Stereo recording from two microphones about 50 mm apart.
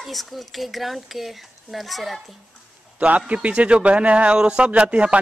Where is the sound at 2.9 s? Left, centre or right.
Right.